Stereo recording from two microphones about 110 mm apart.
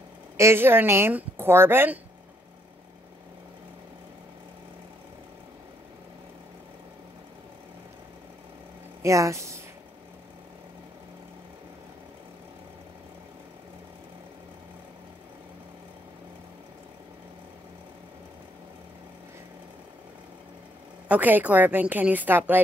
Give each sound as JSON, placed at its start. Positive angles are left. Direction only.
{"t": 0.4, "sound": "speech", "side_deg": -20}
{"t": 9.0, "sound": "speech", "side_deg": -30}
{"t": 21.1, "sound": "a woman's voice", "side_deg": -15}